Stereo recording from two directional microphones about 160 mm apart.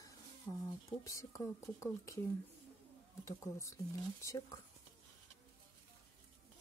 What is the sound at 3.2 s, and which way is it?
Speech, 20° left (ahead or behind).